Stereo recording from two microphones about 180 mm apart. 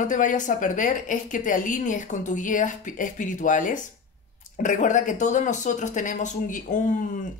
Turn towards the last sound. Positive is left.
turn(degrees=45)  # may be behind; listen again after turning